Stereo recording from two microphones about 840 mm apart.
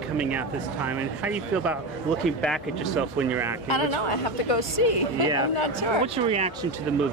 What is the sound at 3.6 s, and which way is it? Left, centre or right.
A woman's voice, left.